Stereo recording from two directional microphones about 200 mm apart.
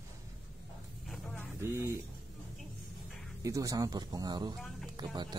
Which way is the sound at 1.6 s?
15° right (ahead or behind).